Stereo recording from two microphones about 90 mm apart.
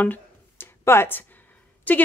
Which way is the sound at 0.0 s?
20° left (ahead or behind).